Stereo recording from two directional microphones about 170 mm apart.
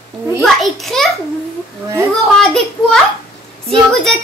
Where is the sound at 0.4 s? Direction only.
Centre (ahead or behind).